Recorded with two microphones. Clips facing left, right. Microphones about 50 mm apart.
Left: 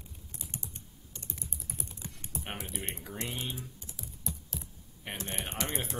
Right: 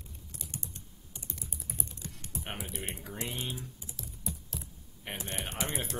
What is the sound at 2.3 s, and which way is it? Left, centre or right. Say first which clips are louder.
Typing: even; centre.